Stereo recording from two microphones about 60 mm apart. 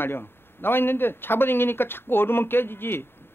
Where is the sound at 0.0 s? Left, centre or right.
Left.